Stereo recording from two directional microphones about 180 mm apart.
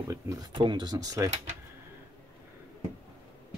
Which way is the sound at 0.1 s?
20° right (ahead or behind).